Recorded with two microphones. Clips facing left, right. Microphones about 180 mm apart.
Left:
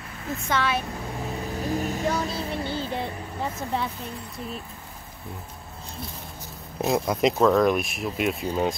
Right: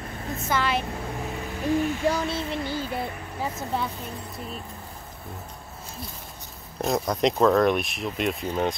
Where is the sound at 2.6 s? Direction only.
25° left (ahead or behind).